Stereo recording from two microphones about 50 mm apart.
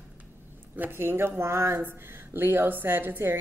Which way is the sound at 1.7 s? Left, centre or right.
Right.